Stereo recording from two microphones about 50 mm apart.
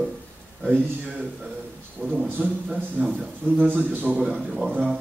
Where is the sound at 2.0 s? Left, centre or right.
Right.